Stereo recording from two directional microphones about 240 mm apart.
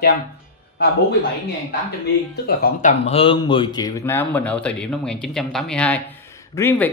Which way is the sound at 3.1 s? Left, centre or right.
Left.